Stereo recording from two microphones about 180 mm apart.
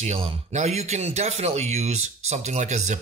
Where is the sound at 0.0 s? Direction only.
35° right (ahead or behind).